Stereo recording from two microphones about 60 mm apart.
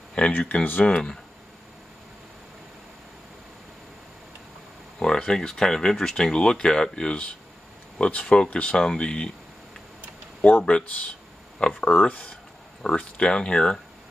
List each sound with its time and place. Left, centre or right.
0.1 s speech: left
4.9 s speech: centre
10.7 s speech: left